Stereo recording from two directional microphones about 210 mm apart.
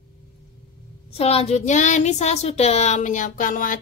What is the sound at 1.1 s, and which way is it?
Speech, 30° left (ahead or behind).